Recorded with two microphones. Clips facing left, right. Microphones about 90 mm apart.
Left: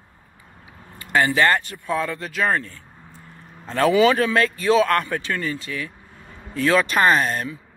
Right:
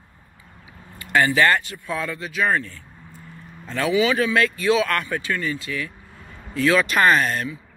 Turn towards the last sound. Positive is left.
turn(degrees=35)  # may be behind; listen again after turning